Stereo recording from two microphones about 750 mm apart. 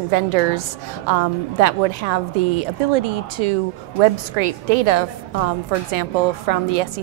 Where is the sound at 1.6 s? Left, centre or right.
Right.